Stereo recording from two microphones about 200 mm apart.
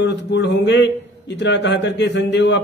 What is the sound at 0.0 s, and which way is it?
A man's voice, 60° left (ahead or behind).